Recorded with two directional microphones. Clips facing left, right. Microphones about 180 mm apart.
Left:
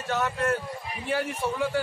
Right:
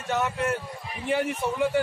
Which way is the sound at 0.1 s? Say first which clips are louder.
Even; 20° right (ahead or behind).